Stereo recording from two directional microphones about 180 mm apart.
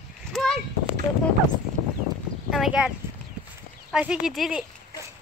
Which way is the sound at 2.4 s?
Centre (ahead or behind).